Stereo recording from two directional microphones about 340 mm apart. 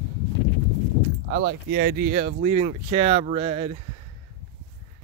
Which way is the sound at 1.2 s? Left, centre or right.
Right.